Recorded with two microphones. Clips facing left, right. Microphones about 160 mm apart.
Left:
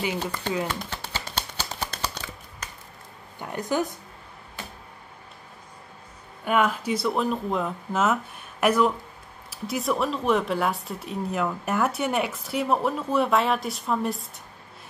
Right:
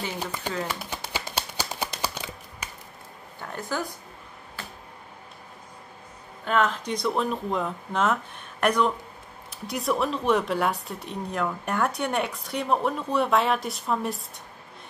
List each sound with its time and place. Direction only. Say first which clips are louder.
0.2 s speech: left 2 dB; 10° right (ahead or behind)
0.7 s a sound: left 1 dB; 10° right (ahead or behind)
3.3 s speech: left 5 dB; 15° left (ahead or behind)
6.4 s speech: left 1 dB; 10° left (ahead or behind)